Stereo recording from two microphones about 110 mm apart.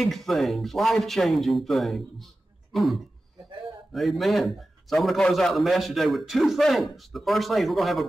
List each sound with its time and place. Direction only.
0.0 s a man's voice: centre (ahead or behind)